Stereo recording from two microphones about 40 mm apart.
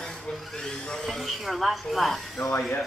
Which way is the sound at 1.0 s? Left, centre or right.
Centre.